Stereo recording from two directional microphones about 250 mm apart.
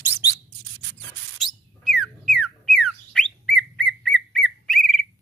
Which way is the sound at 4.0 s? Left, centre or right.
Centre.